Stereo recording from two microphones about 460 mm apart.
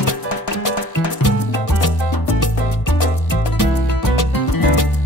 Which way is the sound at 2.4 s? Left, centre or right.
Left.